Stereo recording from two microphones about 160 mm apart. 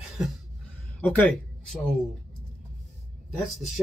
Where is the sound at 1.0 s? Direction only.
10° left (ahead or behind).